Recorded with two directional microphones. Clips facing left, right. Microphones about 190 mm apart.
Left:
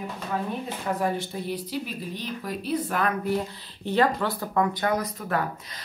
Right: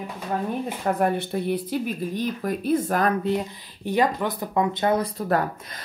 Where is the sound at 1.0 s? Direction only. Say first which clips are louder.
Right 4 dB; 60° right (ahead or behind); by 3.1 s 40° right (ahead or behind).